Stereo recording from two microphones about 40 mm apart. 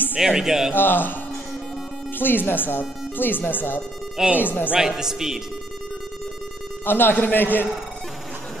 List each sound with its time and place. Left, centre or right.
0.3 s speech: centre
0.7 s speech: left
2.1 s speech: left
4.7 s speech: centre
6.9 s speech: left